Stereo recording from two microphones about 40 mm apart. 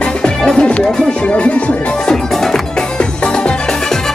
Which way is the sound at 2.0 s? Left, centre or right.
Centre.